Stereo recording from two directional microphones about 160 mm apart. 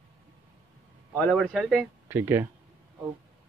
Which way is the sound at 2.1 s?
15° right (ahead or behind).